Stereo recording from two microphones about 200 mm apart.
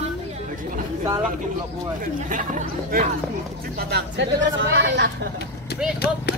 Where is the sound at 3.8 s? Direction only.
55° right (ahead or behind).